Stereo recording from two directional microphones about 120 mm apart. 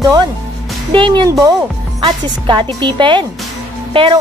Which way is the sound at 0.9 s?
45° right (ahead or behind).